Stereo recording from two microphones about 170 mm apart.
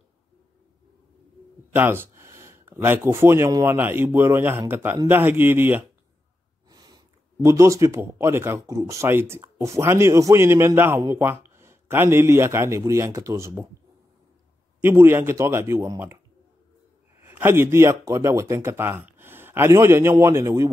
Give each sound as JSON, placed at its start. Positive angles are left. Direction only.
{"t": 1.7, "sound": "a man's voice", "side_deg": -15}
{"t": 6.7, "sound": "a man's voice", "side_deg": -25}
{"t": 14.8, "sound": "a man's voice", "side_deg": -15}
{"t": 17.2, "sound": "a man's voice", "side_deg": -15}